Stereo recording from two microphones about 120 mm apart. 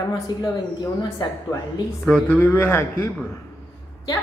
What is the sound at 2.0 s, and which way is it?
Speech, 10° left (ahead or behind).